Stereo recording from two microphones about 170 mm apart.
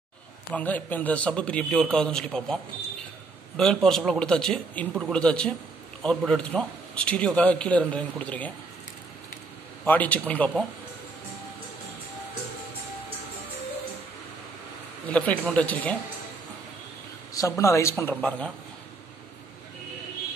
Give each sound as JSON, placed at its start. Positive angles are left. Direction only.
{"t": 0.5, "sound": "a man's voice", "side_deg": 10}
{"t": 9.8, "sound": "a man's voice", "side_deg": 10}
{"t": 15.0, "sound": "a man's voice", "side_deg": 5}
{"t": 17.3, "sound": "a man's voice", "side_deg": 20}